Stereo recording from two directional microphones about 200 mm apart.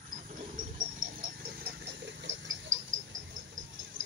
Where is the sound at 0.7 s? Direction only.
45° right (ahead or behind).